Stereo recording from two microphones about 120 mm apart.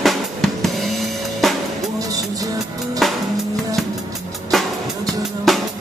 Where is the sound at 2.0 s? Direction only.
30° right (ahead or behind).